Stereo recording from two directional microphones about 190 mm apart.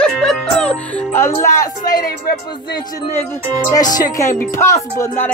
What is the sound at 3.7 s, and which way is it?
Speech, 20° left (ahead or behind).